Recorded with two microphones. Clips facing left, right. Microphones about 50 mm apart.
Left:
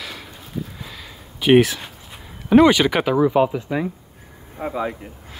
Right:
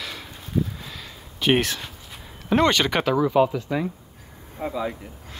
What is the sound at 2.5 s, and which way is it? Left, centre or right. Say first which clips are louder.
Speech: left 6 dB; centre.